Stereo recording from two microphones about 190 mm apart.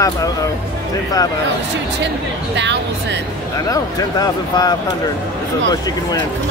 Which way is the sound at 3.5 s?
20° left (ahead or behind).